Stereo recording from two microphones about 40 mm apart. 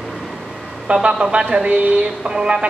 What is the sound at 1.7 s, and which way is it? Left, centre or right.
Speech, right.